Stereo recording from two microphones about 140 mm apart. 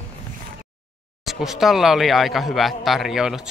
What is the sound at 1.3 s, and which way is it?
Speech, centre (ahead or behind).